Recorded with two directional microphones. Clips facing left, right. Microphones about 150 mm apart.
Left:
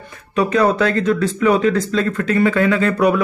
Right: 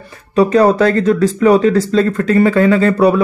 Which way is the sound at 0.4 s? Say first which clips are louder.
Right 5 dB; 35° right (ahead or behind).